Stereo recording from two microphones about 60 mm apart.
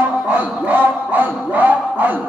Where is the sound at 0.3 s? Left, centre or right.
Right.